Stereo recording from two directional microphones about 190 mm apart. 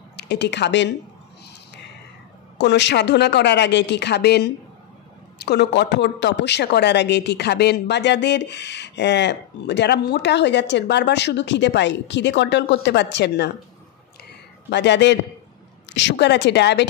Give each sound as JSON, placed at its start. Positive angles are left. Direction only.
{"t": 0.1, "sound": "speech", "side_deg": 60}
{"t": 2.5, "sound": "speech", "side_deg": 65}
{"t": 14.7, "sound": "speech", "side_deg": 65}